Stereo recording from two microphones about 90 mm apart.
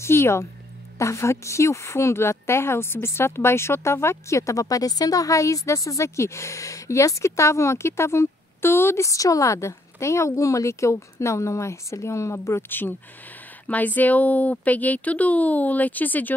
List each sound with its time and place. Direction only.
0.0 s a woman's voice: 30° left (ahead or behind)